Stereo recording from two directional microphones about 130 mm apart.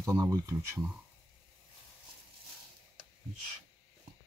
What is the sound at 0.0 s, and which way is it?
Speech, 25° right (ahead or behind).